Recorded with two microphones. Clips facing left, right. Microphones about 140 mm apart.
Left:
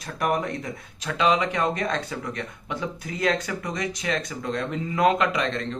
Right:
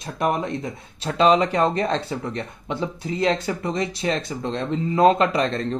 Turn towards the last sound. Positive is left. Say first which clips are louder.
# right 4 dB
turn(degrees=-35)  # may be behind; listen again after turning